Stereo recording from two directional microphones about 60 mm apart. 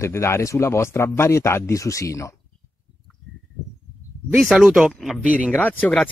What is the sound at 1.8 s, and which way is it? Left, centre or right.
Speech, left.